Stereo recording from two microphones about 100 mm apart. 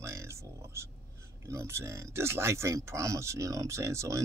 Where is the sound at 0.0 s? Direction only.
30° right (ahead or behind).